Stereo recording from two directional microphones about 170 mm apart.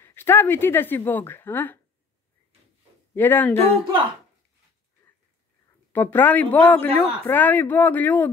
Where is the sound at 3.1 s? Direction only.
10° left (ahead or behind).